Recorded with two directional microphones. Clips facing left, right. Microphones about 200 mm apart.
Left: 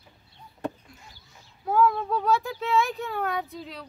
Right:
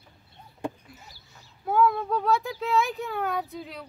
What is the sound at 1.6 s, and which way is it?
Speech, centre (ahead or behind).